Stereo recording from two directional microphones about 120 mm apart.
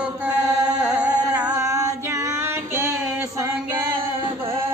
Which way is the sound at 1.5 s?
25° right (ahead or behind).